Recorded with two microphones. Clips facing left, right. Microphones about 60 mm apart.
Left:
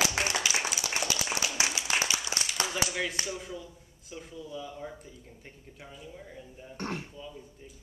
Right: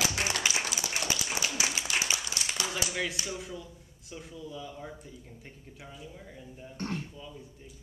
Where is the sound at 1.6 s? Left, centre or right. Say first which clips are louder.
Left 3 dB; left.